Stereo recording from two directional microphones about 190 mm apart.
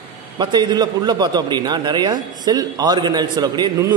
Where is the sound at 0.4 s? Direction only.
25° right (ahead or behind).